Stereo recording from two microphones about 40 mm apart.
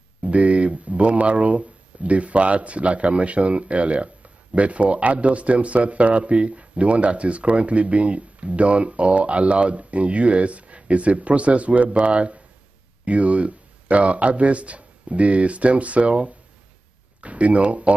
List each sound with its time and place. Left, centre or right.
0.2 s speech: right